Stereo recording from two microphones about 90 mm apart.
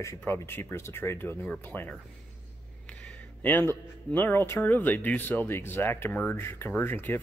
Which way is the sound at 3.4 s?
20° left (ahead or behind).